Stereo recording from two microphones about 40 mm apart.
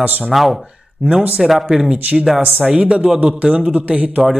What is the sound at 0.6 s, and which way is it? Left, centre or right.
Speech, right.